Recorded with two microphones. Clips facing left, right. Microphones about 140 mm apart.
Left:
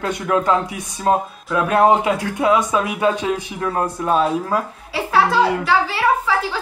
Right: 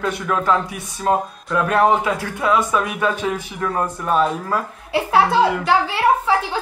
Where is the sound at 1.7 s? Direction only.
20° left (ahead or behind).